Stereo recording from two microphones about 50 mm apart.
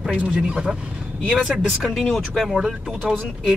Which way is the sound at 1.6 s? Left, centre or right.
Centre.